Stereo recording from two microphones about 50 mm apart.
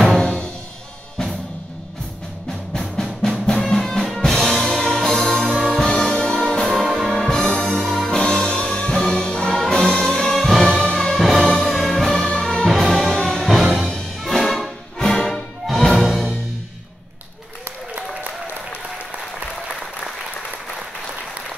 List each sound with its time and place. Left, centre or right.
0.1 s music: centre
2.7 s drum: centre
6.6 s music: centre
7.2 s music: centre
12.6 s music: centre
16.1 s music: centre